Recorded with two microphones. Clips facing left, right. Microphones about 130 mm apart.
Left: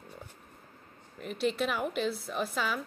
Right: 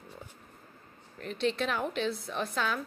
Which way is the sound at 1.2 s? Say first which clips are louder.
Even; 5° left (ahead or behind).